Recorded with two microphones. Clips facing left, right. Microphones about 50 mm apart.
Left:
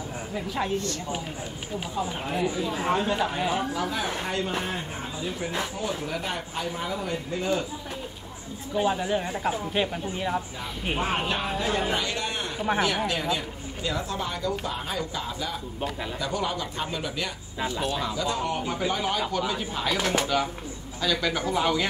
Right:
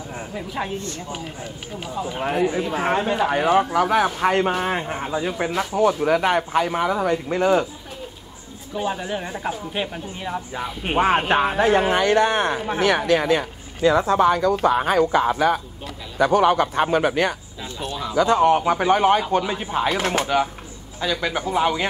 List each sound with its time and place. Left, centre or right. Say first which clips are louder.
2.2 s speech: right 9 dB; right
3.7 s a man's voice: right 10 dB; right
8.8 s speech: even; centre
11.0 s a man's voice: right 11 dB; right
19.3 s speech: right 7 dB; right
21.0 s speech: right 3 dB; right